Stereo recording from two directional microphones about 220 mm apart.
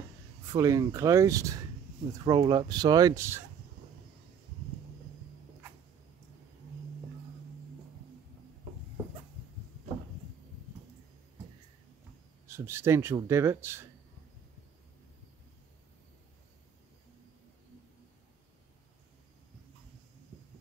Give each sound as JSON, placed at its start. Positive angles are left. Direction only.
{"t": 0.5, "sound": "speech", "side_deg": -15}
{"t": 12.4, "sound": "speech", "side_deg": -10}